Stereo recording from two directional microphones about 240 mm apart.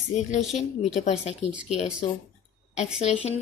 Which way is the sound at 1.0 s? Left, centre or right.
Left.